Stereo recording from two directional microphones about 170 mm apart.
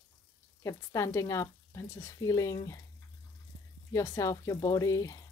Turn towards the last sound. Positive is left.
turn(degrees=20)  # may be behind; listen again after turning